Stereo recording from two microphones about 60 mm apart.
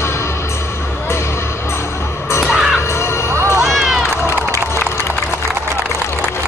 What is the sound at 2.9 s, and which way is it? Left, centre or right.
Music, left.